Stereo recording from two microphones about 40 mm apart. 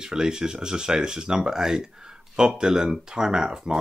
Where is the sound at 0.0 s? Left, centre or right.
Centre.